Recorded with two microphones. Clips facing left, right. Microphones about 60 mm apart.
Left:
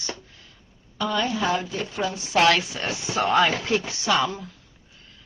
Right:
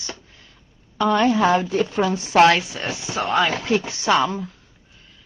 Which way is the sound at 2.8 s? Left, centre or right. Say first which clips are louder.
Even; centre.